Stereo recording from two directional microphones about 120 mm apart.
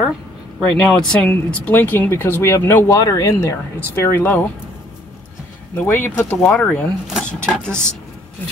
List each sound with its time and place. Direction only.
0.6 s speech: 5° left (ahead or behind)
5.8 s speech: 15° left (ahead or behind)